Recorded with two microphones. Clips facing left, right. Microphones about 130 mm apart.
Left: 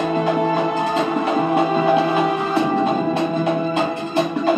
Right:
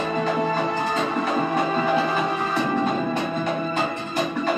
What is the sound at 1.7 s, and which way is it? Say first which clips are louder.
Music: left 5 dB; 15° left (ahead or behind).